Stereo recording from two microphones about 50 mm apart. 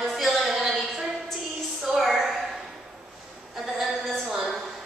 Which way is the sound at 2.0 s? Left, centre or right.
Centre.